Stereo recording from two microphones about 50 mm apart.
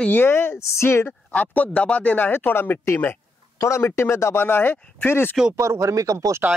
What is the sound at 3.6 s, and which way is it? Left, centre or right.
Speech, left.